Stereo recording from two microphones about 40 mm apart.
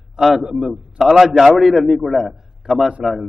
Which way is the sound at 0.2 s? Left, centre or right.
Centre.